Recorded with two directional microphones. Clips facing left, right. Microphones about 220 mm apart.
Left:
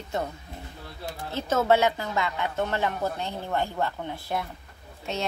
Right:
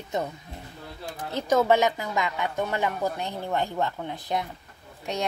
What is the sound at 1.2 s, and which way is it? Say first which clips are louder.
A woman's voice: right 3 dB; 15° right (ahead or behind).